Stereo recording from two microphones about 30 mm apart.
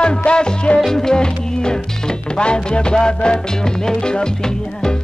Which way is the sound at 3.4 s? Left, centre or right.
Left.